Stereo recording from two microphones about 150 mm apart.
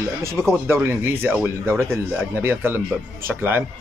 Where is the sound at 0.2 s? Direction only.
20° right (ahead or behind).